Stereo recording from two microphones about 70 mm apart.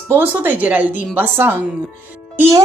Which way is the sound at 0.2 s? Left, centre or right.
Right.